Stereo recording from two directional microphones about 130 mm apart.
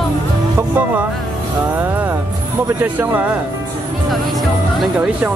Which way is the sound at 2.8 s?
10° right (ahead or behind).